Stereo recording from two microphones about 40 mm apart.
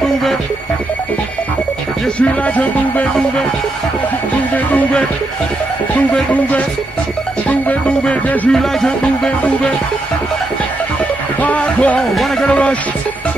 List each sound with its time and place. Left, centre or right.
0.0 s music: centre
2.1 s speech: left
8.5 s music: centre
11.4 s music: left